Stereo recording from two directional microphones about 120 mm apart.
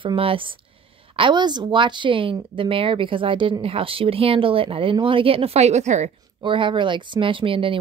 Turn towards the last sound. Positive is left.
turn(degrees=-45)  # may be behind; listen again after turning